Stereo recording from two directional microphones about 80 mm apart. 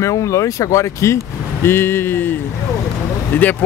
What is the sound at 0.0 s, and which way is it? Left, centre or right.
Speech, left.